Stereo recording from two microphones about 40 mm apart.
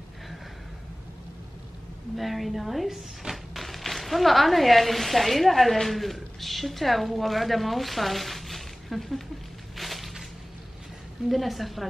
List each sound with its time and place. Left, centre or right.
2.1 s speech: centre
9.8 s a sound: centre
11.2 s a woman's voice: centre